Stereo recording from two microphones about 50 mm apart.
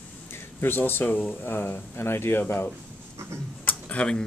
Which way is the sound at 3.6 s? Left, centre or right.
Left.